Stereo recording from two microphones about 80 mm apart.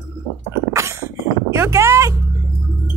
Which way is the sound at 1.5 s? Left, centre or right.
Right.